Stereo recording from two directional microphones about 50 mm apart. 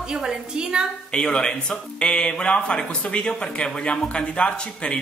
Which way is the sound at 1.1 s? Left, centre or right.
Centre.